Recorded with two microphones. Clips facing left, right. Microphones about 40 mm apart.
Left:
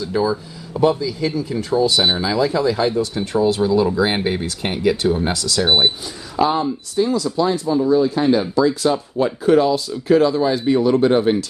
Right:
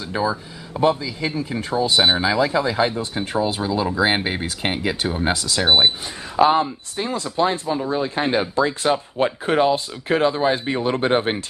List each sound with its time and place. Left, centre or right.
0.0 s speech: right
6.3 s speech: right